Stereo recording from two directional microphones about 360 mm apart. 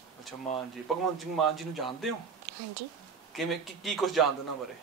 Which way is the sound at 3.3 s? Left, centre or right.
Centre.